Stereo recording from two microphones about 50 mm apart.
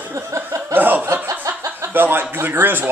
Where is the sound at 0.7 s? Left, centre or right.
Right.